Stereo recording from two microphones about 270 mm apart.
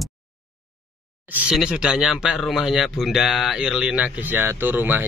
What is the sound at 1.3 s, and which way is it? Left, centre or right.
Speech, centre.